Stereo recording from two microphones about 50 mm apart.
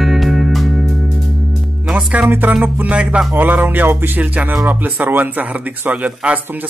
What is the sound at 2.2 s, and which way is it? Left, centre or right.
Speech, right.